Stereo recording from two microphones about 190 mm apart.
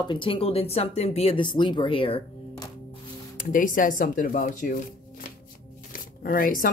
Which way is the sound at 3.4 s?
45° left (ahead or behind).